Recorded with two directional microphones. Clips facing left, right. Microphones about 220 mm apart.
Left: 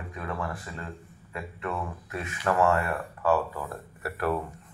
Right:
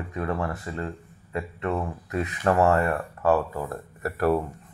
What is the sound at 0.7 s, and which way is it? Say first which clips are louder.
Speech: right 7 dB; 35° right (ahead or behind).